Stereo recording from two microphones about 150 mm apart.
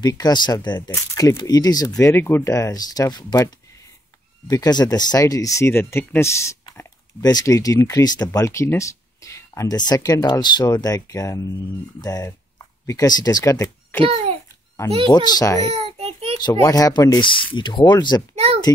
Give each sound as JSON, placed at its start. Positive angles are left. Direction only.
{"t": 0.0, "sound": "speech", "side_deg": 25}
{"t": 14.0, "sound": "a child's voice", "side_deg": -45}
{"t": 15.1, "sound": "speech", "side_deg": 25}
{"t": 15.7, "sound": "baby cry", "side_deg": -40}
{"t": 16.3, "sound": "speech", "side_deg": 25}
{"t": 18.3, "sound": "a sound", "side_deg": -45}